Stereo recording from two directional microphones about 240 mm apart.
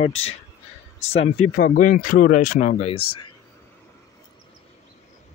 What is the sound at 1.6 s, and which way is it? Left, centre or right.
Speech, left.